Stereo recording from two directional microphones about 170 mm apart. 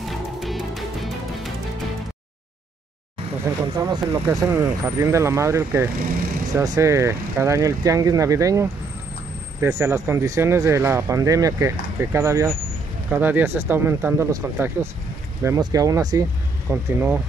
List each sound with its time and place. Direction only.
0.0 s music: centre (ahead or behind)
3.7 s speech: 20° right (ahead or behind)